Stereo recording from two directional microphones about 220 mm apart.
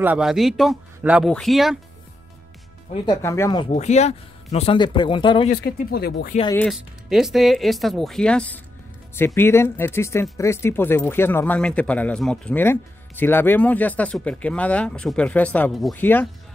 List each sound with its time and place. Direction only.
0.0 s speech: 5° right (ahead or behind)
3.2 s speech: 10° left (ahead or behind)
3.7 s speech: 30° left (ahead or behind)
5.5 s speech: 45° left (ahead or behind)
6.5 s speech: centre (ahead or behind)